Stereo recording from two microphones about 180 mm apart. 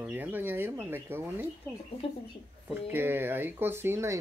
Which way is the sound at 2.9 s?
10° right (ahead or behind).